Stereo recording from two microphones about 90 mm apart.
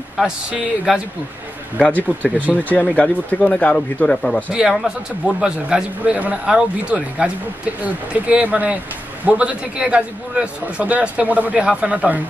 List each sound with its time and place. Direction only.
0.2 s a man's voice: 10° right (ahead or behind)
1.8 s speech: 15° left (ahead or behind)
4.5 s a man's voice: 10° right (ahead or behind)